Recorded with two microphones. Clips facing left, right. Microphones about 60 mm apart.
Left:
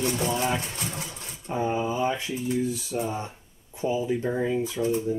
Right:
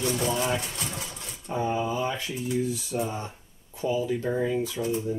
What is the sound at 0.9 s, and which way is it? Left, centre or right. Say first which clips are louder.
Sewing machine: left 1 dB; left.